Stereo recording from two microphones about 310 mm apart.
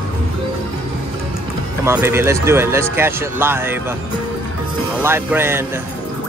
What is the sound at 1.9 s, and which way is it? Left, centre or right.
Speech, centre.